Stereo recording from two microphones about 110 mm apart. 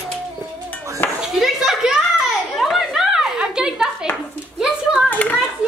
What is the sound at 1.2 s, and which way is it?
Speech, 5° right (ahead or behind).